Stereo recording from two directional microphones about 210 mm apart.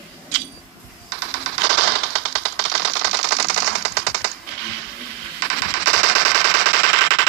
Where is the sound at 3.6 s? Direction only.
55° right (ahead or behind).